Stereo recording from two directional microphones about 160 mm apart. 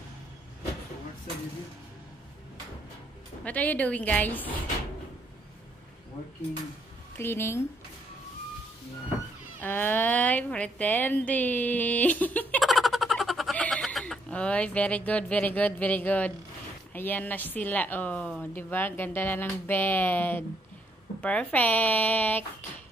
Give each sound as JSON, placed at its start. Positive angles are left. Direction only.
{"t": 3.4, "sound": "a woman's voice", "side_deg": 10}
{"t": 7.2, "sound": "a woman's voice", "side_deg": 15}
{"t": 9.6, "sound": "a woman's voice", "side_deg": 10}
{"t": 12.6, "sound": "a sound", "side_deg": 0}
{"t": 16.9, "sound": "a woman's voice", "side_deg": 10}